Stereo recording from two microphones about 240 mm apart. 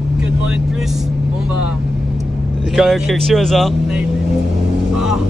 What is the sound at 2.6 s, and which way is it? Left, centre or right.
Speech, centre.